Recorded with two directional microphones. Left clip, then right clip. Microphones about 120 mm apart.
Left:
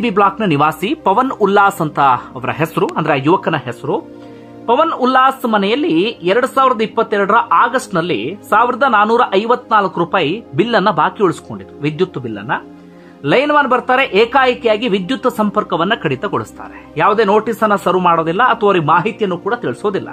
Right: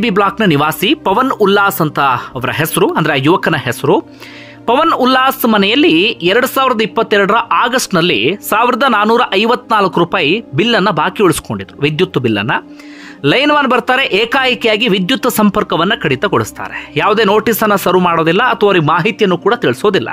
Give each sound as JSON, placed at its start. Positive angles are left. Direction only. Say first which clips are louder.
{"t": 0.0, "sound": "speech", "louder": "right 1 dB", "side_deg": -30}
{"t": 10.1, "sound": "speech", "louder": "right 2 dB", "side_deg": -30}
{"t": 13.2, "sound": "speech", "louder": "right 2 dB", "side_deg": -40}
{"t": 16.3, "sound": "speech", "louder": "right 6 dB", "side_deg": -40}